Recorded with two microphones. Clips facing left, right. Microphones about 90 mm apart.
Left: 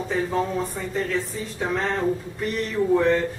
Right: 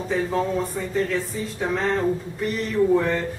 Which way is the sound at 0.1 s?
Centre (ahead or behind).